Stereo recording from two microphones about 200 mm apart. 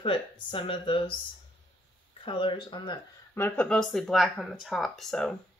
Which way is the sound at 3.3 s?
10° left (ahead or behind).